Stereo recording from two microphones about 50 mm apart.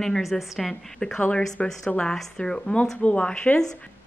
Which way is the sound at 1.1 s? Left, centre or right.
Left.